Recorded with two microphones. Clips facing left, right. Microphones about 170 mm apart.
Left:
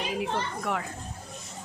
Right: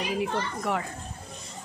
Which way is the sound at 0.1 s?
Centre (ahead or behind).